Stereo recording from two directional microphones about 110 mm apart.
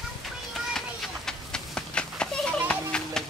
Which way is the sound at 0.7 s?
5° left (ahead or behind).